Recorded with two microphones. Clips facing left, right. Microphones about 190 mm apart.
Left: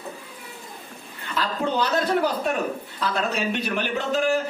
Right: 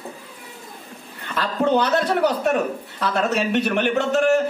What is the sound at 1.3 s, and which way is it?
A man's voice, 60° right (ahead or behind).